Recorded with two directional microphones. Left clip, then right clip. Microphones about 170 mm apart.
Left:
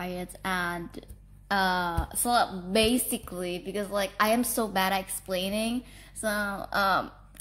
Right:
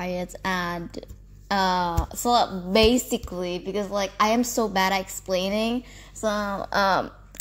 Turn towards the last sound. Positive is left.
turn(degrees=-30)  # may be behind; listen again after turning